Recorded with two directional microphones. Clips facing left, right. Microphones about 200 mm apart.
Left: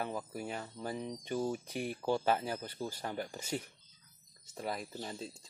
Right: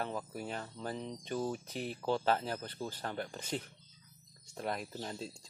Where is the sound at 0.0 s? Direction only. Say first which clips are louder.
Even; 10° left (ahead or behind).